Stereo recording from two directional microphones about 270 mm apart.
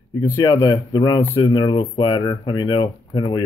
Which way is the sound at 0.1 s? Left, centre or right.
Centre.